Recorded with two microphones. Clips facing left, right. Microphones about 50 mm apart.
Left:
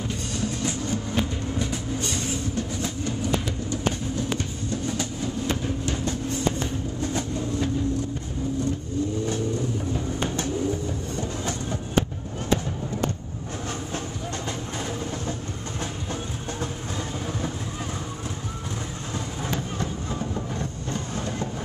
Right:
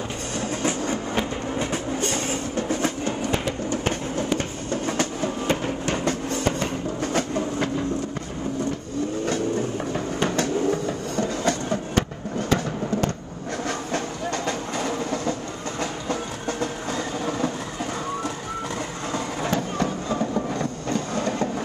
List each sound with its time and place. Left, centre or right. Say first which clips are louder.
0.4 s music: right 4 dB; right
9.9 s train: right 4 dB; right
13.7 s train: right 4 dB; right
19.1 s train: right 5 dB; right